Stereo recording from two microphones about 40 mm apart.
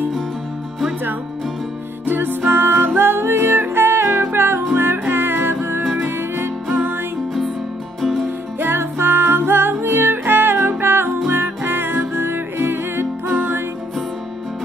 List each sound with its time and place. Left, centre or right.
2.0 s music: right
8.0 s music: centre
8.5 s music: right
13.3 s music: right